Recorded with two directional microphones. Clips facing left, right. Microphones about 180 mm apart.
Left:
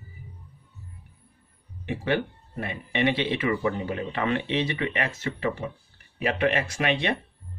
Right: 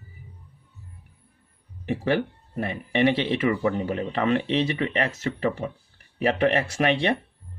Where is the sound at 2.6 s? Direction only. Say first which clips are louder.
Right 4 dB; 35° right (ahead or behind).